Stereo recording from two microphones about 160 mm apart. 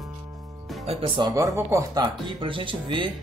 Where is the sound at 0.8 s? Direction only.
35° right (ahead or behind).